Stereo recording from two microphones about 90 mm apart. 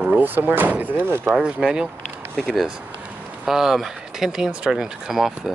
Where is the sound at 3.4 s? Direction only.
5° right (ahead or behind).